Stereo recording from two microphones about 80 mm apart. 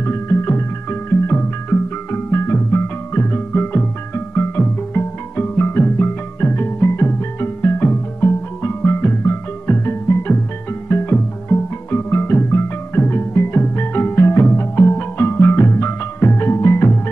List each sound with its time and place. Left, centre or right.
0.0 s music: left